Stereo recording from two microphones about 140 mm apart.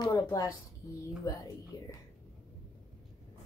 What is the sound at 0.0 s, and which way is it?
A woman's voice, 30° left (ahead or behind).